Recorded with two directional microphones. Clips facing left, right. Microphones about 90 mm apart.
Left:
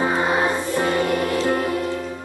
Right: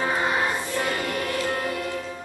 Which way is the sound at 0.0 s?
25° left (ahead or behind).